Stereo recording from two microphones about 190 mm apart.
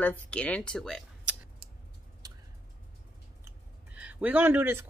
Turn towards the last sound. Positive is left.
turn(degrees=-10)  # may be behind; listen again after turning